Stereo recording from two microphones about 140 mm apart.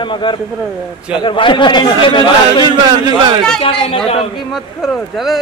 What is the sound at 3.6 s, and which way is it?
Speech, 35° left (ahead or behind).